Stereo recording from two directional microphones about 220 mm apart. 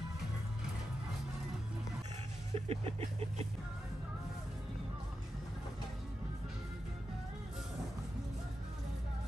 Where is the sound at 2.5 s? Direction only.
25° right (ahead or behind).